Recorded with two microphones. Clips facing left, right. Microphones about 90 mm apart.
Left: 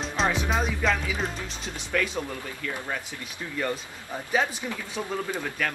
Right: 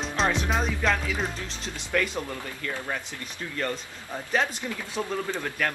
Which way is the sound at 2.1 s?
5° left (ahead or behind).